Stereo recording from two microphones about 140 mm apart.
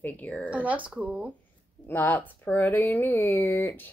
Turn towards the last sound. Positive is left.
turn(degrees=15)  # may be behind; listen again after turning